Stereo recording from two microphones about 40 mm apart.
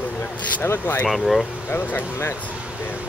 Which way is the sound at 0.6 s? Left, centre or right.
Left.